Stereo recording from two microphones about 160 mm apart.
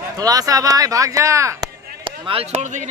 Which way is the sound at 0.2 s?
25° right (ahead or behind).